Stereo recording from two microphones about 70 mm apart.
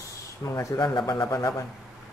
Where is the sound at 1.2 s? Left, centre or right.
Left.